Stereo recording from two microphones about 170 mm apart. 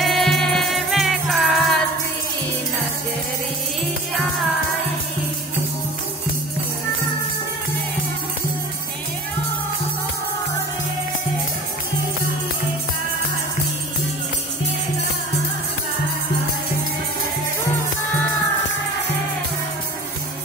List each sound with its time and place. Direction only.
0.0 s music: centre (ahead or behind)